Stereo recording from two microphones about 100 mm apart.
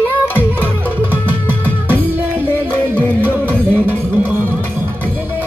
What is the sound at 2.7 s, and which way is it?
Music, 20° left (ahead or behind).